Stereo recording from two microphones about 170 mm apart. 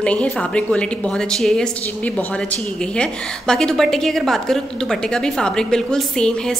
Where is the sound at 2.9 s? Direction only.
5° left (ahead or behind).